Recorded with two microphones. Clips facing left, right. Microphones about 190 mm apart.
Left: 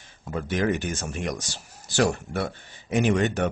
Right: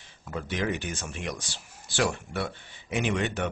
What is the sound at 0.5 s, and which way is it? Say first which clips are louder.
Speech: left 5 dB; 45° left (ahead or behind).